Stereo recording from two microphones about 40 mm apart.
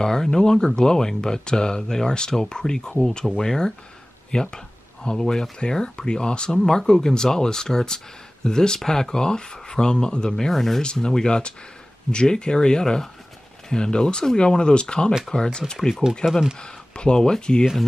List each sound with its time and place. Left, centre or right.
0.0 s speech: centre
6.6 s speech: centre
10.5 s speech: centre
10.8 s speech: left
16.3 s speech: centre
16.5 s speech: left